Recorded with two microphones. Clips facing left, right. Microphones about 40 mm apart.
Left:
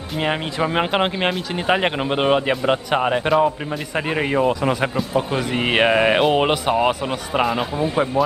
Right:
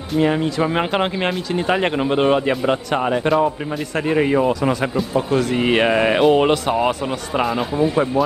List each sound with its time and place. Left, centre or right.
0.2 s speech: left
0.6 s a man's voice: centre